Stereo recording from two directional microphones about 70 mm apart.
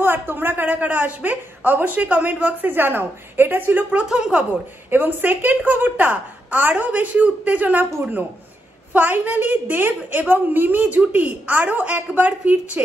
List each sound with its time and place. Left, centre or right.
0.0 s a woman's voice: right
4.1 s speech: centre
4.9 s a woman's voice: right